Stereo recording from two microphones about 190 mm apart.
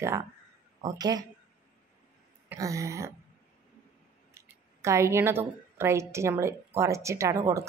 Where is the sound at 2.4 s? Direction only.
15° right (ahead or behind).